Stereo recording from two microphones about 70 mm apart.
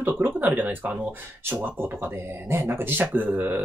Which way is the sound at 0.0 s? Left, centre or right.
Right.